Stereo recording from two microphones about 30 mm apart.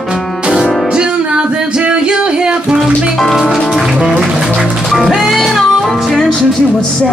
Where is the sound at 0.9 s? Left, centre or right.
Right.